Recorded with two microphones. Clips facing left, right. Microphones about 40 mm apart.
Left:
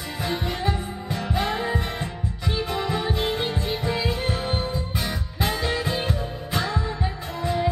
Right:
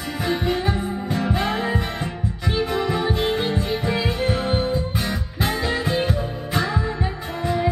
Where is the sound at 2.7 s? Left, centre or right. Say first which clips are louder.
Right 2 dB; centre.